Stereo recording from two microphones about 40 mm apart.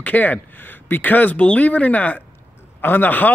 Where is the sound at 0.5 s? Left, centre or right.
Left.